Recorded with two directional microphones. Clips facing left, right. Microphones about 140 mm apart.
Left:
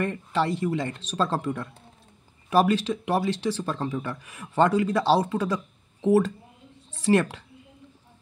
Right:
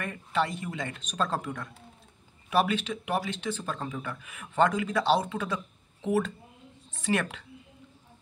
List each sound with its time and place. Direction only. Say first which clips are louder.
0.0 s speech: left 4 dB; 35° left (ahead or behind)
6.9 s speech: left 7 dB; 35° left (ahead or behind)